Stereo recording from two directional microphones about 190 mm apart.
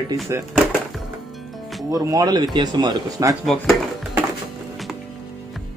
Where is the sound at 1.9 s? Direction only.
20° right (ahead or behind).